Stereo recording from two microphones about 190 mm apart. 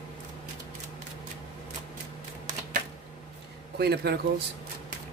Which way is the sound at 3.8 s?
55° right (ahead or behind).